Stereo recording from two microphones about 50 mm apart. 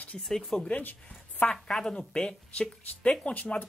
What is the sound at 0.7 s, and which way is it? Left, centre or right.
Speech, left.